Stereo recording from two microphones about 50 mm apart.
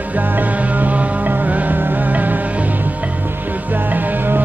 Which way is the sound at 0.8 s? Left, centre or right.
Right.